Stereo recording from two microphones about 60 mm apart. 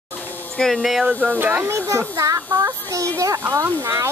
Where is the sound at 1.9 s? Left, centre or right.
Right.